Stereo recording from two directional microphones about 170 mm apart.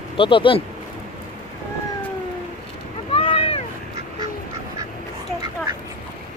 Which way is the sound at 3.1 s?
35° left (ahead or behind).